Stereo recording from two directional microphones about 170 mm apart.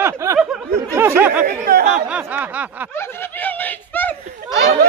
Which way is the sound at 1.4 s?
65° right (ahead or behind).